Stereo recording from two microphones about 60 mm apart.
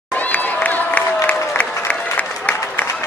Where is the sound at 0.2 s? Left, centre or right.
Left.